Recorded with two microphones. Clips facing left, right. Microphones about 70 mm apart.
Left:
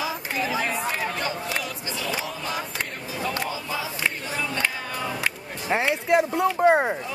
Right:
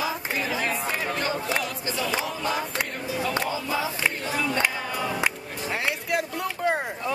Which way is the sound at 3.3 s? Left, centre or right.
Right.